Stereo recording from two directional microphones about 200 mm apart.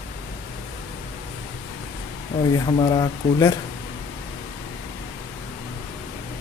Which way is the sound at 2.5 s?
20° left (ahead or behind).